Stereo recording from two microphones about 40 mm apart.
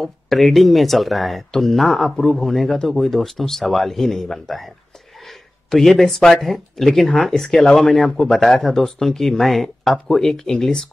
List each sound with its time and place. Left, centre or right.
0.3 s speech: centre
5.7 s speech: centre